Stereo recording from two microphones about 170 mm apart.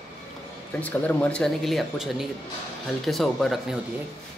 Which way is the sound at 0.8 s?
10° left (ahead or behind).